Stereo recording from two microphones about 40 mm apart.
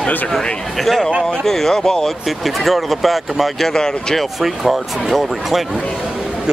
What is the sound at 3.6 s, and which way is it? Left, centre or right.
Speech, centre.